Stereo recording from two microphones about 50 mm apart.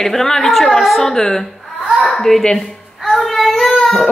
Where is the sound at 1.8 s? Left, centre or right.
Centre.